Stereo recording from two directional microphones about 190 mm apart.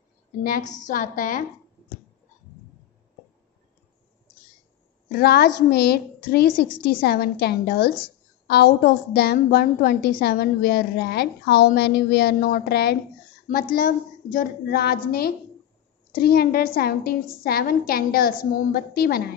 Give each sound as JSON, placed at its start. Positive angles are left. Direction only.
{"t": 0.4, "sound": "a woman's voice", "side_deg": 45}
{"t": 5.1, "sound": "a woman's voice", "side_deg": 55}
{"t": 12.4, "sound": "a woman's voice", "side_deg": 45}